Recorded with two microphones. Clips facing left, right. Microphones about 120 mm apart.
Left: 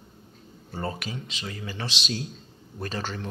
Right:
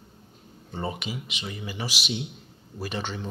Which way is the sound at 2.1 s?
20° right (ahead or behind).